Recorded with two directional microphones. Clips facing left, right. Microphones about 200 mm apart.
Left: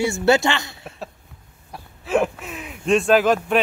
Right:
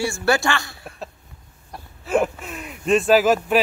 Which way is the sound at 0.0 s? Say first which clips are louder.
Left 3 dB; 20° left (ahead or behind).